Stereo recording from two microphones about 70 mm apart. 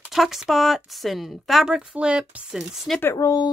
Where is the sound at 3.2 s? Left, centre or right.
Left.